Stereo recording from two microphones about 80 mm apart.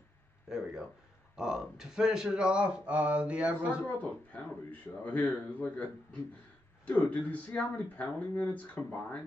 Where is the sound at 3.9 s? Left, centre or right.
Left.